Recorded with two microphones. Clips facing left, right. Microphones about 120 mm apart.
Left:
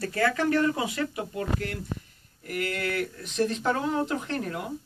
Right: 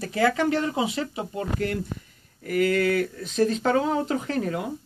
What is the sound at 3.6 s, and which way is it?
Speech, 90° right.